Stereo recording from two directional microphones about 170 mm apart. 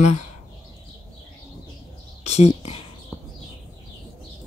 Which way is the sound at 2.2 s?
40° left (ahead or behind).